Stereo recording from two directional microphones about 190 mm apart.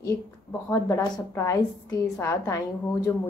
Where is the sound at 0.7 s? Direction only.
15° left (ahead or behind).